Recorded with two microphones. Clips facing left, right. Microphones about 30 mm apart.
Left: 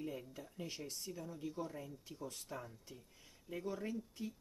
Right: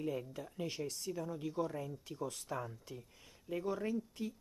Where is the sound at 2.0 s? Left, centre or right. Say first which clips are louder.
Right 6 dB; right.